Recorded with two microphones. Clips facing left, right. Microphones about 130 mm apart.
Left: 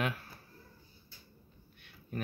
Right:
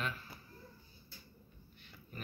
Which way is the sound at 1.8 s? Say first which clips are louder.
Left 10 dB; 65° left (ahead or behind).